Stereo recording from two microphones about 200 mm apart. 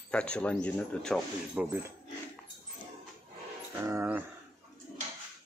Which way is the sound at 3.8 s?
15° right (ahead or behind).